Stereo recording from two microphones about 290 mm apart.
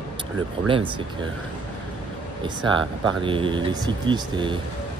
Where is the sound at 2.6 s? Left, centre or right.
Centre.